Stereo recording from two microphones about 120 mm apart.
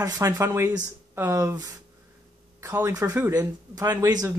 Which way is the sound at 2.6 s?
30° right (ahead or behind).